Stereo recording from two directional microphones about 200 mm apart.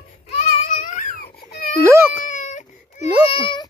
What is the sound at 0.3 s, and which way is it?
Baby cry, 35° left (ahead or behind).